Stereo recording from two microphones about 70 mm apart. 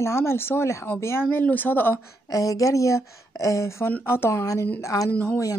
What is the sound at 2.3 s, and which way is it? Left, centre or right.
A woman's voice, left.